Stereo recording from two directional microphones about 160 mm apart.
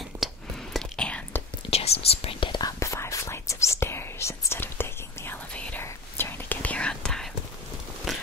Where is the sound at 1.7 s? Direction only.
40° left (ahead or behind); by 7.2 s 5° left (ahead or behind).